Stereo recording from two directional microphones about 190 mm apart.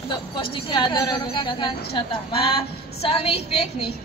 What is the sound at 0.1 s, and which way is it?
A woman's voice, 25° left (ahead or behind).